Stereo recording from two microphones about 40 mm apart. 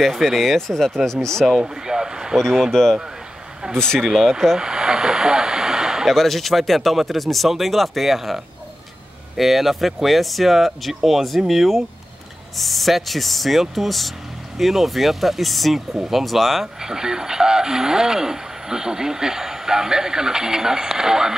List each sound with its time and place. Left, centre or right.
0.0 s speech: centre
1.6 s speech: centre
2.7 s speech: centre
4.1 s speech: centre
4.6 s speech: centre
6.0 s speech: centre
9.4 s speech: centre
16.8 s speech: centre